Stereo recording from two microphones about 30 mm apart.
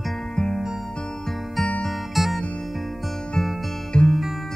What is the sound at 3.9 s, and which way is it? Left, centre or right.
Music, left.